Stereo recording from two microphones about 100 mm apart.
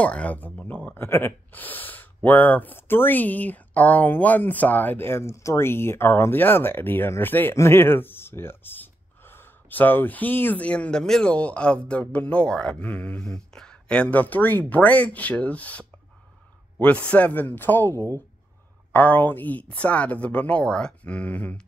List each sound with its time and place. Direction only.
0.0 s speech: 10° left (ahead or behind)